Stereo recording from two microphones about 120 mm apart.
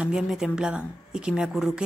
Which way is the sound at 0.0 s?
5° right (ahead or behind).